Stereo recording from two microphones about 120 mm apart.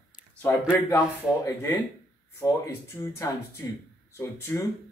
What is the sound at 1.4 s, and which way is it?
Speech, 25° left (ahead or behind).